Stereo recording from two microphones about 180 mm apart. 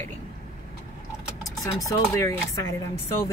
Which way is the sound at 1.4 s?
20° left (ahead or behind).